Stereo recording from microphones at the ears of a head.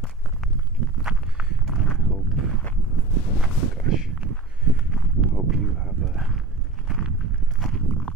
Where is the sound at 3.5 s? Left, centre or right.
Right.